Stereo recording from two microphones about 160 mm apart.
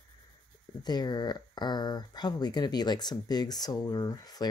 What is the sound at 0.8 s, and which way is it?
Speech, 25° left (ahead or behind).